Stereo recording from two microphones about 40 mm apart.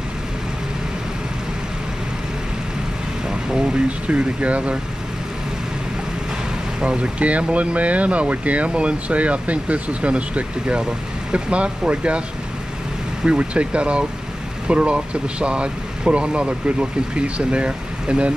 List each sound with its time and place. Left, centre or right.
3.3 s speech: right
6.8 s speech: right
13.2 s speech: right